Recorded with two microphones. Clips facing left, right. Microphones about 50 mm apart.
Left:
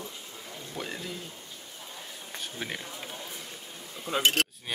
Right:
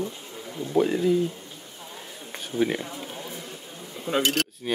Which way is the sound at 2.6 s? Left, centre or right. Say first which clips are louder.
Right 13 dB; centre.